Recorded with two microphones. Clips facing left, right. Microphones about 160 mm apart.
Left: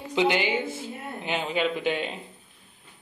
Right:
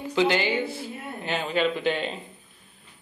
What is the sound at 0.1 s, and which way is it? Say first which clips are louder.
Speech: right 1 dB; 15° left (ahead or behind).